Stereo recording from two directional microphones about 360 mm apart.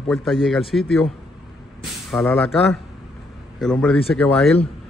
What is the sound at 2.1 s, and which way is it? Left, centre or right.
A man's voice, centre.